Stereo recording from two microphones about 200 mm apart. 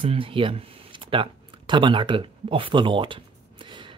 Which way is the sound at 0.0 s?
25° right (ahead or behind).